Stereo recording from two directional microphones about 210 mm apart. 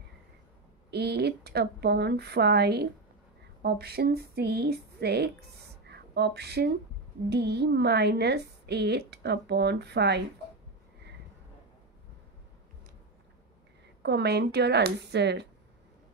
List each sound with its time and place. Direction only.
0.8 s a woman's voice: 50° right (ahead or behind)
5.9 s a sound: 50° right (ahead or behind)
7.2 s a woman's voice: 50° right (ahead or behind)
14.0 s a woman's voice: 50° right (ahead or behind)